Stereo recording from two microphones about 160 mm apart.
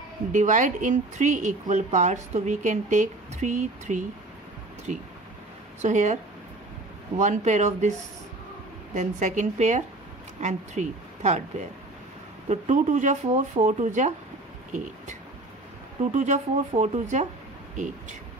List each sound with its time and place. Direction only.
0.3 s speech: 50° right (ahead or behind)
7.2 s speech: 50° right (ahead or behind)
8.9 s speech: 50° right (ahead or behind)
16.0 s speech: 50° right (ahead or behind)